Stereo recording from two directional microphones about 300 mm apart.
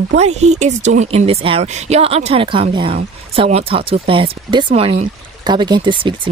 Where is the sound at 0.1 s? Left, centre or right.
Right.